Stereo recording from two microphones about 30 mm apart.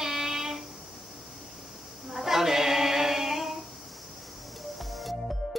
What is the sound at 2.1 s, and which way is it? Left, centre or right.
Child singing, centre.